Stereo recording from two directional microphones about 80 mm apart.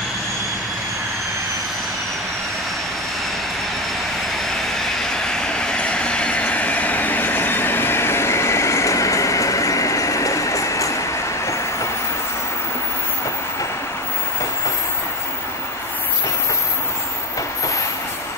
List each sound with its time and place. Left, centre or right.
4.7 s train: centre; by 10.9 s left